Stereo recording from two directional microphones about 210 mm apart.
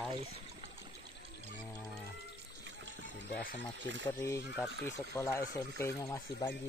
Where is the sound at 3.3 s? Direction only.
45° left (ahead or behind).